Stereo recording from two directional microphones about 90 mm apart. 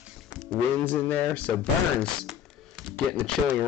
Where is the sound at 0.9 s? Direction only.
20° left (ahead or behind).